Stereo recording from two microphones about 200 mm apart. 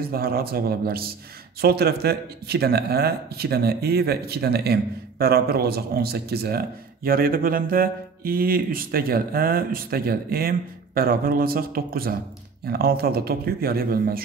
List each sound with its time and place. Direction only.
0.0 s a man's voice: 50° right (ahead or behind)